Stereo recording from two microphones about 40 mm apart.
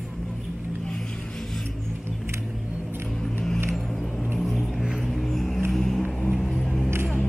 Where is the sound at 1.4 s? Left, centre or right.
Centre.